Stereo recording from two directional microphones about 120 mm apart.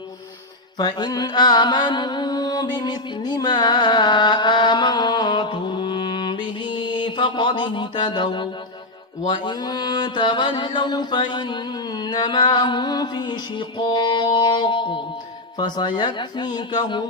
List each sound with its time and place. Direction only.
0.7 s music: 35° left (ahead or behind)
9.3 s mantra: 40° left (ahead or behind)